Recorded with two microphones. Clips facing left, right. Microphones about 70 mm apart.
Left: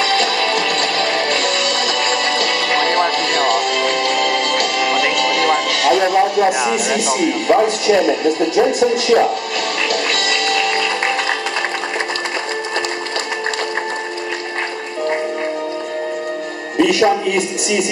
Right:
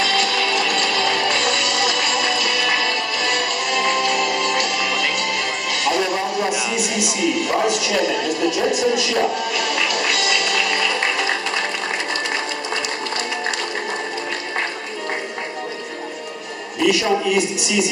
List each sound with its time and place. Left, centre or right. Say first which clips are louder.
0.0 s music: left 3 dB; left
6.6 s speech: left 5 dB; left
9.8 s music: left 2 dB; left
16.7 s speech: left 4 dB; left